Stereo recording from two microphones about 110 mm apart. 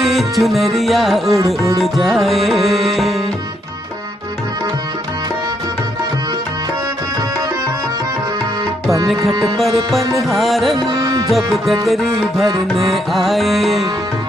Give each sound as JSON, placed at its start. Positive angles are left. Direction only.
{"t": 0.0, "sound": "music", "side_deg": 0}
{"t": 9.2, "sound": "music", "side_deg": -30}
{"t": 9.8, "sound": "music", "side_deg": 0}
{"t": 10.9, "sound": "music", "side_deg": -30}
{"t": 11.2, "sound": "music", "side_deg": 0}